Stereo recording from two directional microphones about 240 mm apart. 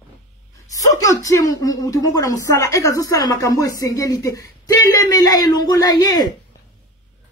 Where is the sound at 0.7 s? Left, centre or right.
Centre.